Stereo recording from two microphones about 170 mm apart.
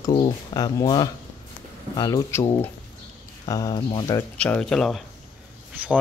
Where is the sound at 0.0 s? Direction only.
25° left (ahead or behind).